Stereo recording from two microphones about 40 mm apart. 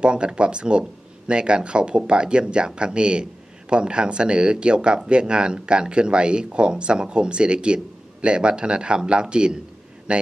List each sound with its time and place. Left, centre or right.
0.0 s speech: right